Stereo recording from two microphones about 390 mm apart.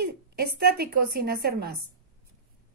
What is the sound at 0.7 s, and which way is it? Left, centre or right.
Speech, right.